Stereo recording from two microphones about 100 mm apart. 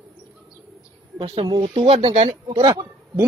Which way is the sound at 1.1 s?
50° right (ahead or behind).